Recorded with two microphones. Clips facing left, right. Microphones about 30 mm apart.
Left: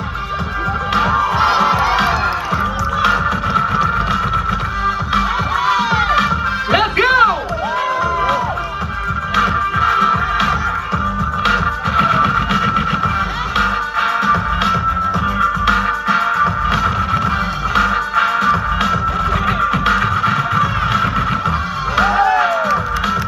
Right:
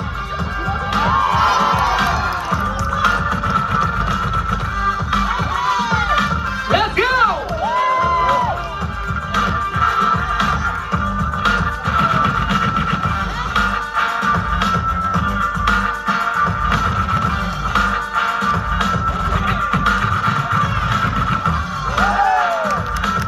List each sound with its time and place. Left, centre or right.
1.6 s music: centre
9.3 s music: centre